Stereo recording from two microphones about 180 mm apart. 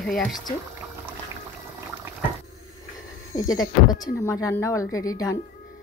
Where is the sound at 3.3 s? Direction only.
20° left (ahead or behind).